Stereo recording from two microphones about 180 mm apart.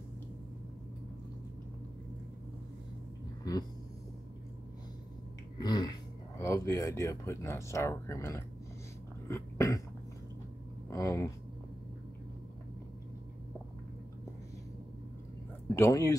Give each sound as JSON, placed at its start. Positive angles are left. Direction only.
{"t": 5.6, "sound": "speech", "side_deg": 20}
{"t": 9.3, "sound": "cough", "side_deg": 15}
{"t": 10.9, "sound": "a sound", "side_deg": 15}
{"t": 15.7, "sound": "speech", "side_deg": 15}